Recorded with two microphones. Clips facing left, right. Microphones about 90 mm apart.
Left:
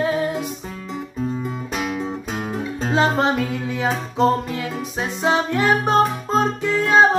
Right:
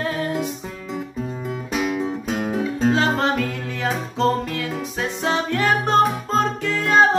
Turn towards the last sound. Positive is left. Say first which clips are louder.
# left 2 dB
turn(degrees=15)  # may be behind; listen again after turning